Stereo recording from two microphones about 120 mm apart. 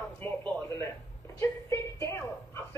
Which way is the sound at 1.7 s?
25° left (ahead or behind).